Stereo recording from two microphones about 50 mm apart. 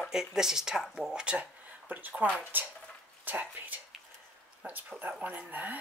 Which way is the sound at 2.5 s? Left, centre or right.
Right.